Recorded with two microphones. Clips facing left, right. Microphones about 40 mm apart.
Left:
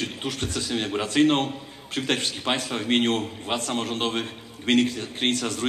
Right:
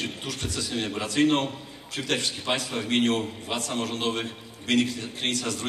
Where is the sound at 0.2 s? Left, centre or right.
Left.